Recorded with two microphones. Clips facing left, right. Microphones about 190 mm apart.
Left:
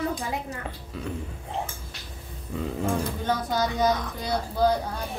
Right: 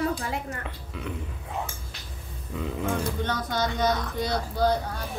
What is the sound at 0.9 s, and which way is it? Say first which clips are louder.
Speech: left 1 dB; 35° left (ahead or behind).